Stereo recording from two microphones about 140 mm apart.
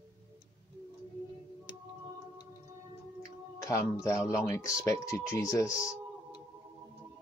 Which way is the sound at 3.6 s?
20° left (ahead or behind).